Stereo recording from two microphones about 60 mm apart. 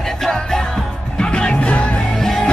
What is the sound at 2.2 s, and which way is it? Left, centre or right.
Music, centre.